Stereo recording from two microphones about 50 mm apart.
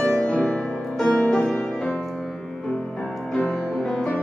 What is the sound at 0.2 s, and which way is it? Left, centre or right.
Music, left.